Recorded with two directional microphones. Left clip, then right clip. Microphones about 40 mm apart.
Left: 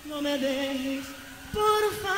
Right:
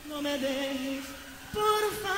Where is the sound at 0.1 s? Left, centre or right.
Left.